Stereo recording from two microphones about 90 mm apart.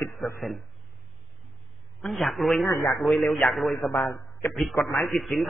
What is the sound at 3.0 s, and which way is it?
Speech, centre (ahead or behind).